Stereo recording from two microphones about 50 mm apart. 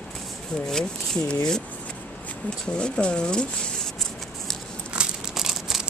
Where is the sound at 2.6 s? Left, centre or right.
Centre.